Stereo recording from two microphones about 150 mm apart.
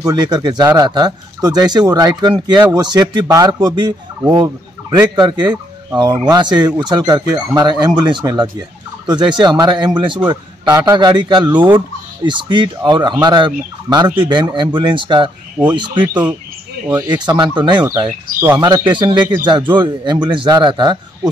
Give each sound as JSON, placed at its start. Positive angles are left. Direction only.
{"t": 0.0, "sound": "speech", "side_deg": -25}
{"t": 4.9, "sound": "speech", "side_deg": -30}